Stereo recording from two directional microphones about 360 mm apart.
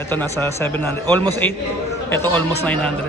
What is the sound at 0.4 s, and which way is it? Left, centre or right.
Speech, centre.